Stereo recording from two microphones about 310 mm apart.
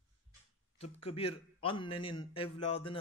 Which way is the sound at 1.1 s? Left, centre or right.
Centre.